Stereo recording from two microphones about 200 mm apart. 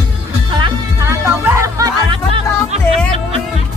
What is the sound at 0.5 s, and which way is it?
Music, 20° right (ahead or behind).